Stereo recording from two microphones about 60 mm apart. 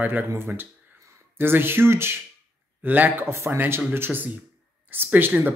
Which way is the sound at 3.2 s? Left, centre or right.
Right.